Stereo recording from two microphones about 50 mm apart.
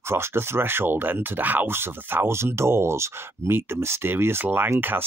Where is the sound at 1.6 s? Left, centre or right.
Right.